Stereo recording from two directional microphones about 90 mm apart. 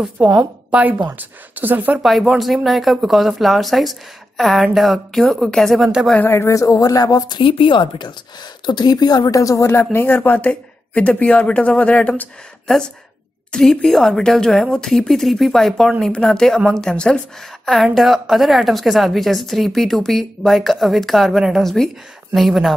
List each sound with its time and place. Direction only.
0.2 s a woman's voice: 10° right (ahead or behind)
2.0 s a woman's voice: centre (ahead or behind)
6.1 s speech: 25° left (ahead or behind); by 7.3 s 45° left (ahead or behind)
7.3 s a woman's voice: 65° left (ahead or behind); by 17.2 s 10° left (ahead or behind)
17.9 s a woman's voice: centre (ahead or behind)